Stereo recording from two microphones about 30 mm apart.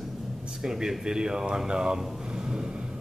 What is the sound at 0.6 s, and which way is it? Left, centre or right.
Speech, centre.